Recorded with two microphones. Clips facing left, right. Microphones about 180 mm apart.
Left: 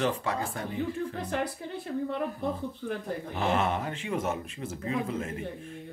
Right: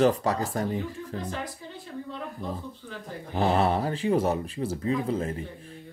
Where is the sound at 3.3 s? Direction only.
35° right (ahead or behind).